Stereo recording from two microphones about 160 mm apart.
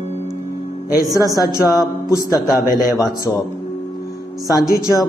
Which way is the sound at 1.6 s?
20° left (ahead or behind).